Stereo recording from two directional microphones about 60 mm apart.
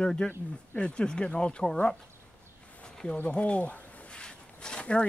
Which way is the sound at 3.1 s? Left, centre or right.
Left.